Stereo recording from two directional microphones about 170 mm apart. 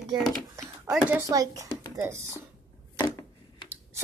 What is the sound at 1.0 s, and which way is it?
Speech, 15° right (ahead or behind).